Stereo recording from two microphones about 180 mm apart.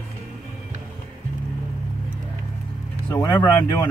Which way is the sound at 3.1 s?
20° left (ahead or behind).